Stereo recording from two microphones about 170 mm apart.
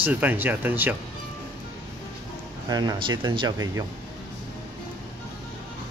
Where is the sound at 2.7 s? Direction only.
25° right (ahead or behind).